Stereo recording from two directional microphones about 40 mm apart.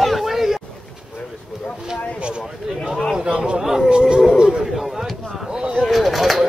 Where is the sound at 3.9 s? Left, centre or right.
Right.